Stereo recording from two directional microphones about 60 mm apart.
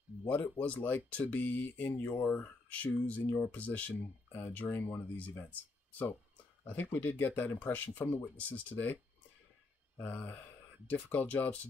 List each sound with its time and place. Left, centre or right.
0.3 s speech: left
2.2 s speech: left
4.3 s speech: left
4.6 s speech: left